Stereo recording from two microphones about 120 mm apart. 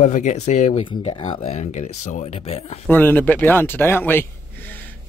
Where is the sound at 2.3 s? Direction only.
60° left (ahead or behind).